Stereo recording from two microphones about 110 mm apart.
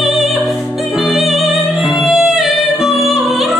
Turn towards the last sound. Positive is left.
turn(degrees=0)  # may be behind; listen again after turning